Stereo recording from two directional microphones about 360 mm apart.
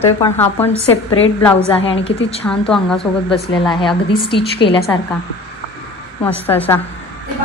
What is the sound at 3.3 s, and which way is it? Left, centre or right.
A woman's voice, centre.